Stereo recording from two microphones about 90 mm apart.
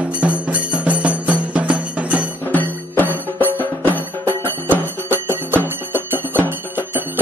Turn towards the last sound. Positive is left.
turn(degrees=-20)  # may be behind; listen again after turning